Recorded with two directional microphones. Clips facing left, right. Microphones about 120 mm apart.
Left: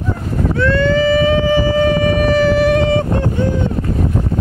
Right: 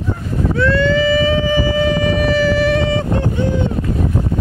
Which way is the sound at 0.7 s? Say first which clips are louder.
Left 3 dB; 45° left (ahead or behind).